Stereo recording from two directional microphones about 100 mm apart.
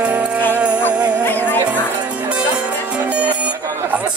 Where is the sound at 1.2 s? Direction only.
20° left (ahead or behind).